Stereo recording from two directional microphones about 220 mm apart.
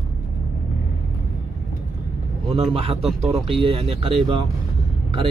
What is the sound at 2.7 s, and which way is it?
Speech, 25° right (ahead or behind).